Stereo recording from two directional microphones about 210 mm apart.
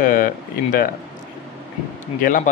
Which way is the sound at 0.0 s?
40° left (ahead or behind).